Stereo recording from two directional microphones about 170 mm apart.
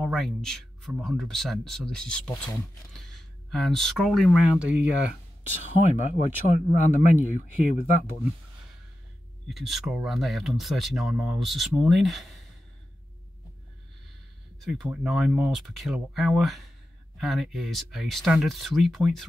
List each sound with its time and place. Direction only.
0.0 s speech: centre (ahead or behind)
5.9 s speech: 45° left (ahead or behind)
9.5 s speech: centre (ahead or behind)
14.6 s speech: centre (ahead or behind)